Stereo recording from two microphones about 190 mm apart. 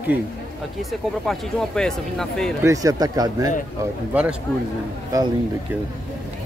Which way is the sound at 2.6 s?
15° right (ahead or behind).